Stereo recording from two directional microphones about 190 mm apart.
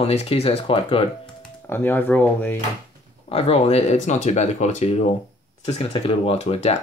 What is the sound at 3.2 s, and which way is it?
Speech, 35° left (ahead or behind).